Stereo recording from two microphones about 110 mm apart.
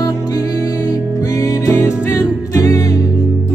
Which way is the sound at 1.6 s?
30° left (ahead or behind).